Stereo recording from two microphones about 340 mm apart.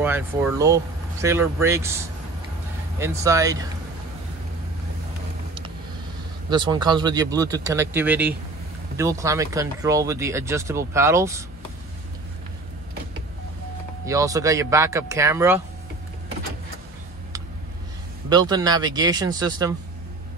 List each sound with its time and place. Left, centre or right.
0.0 s speech: centre
6.5 s speech: centre
14.0 s speech: centre
18.3 s speech: centre